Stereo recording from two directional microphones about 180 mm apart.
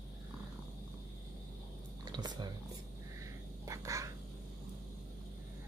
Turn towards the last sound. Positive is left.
turn(degrees=-20)  # may be behind; listen again after turning